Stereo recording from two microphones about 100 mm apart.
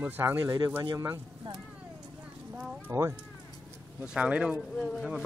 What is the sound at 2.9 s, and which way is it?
Speech, 30° right (ahead or behind).